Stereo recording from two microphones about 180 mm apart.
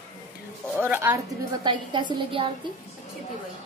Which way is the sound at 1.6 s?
25° right (ahead or behind).